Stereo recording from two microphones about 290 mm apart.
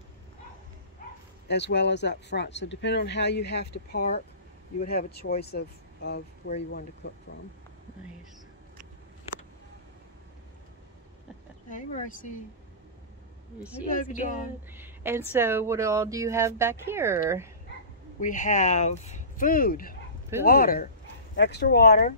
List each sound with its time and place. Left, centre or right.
1.5 s speech: left
11.7 s speech: left
13.6 s a woman's voice: centre
13.8 s speech: left
14.7 s speech: centre
18.2 s speech: left